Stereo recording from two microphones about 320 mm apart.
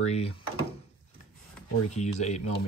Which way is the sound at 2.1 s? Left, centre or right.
Left.